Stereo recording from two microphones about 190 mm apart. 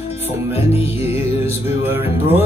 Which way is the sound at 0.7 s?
30° left (ahead or behind).